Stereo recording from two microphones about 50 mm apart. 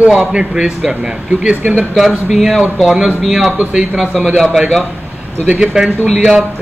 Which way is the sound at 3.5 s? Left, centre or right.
Centre.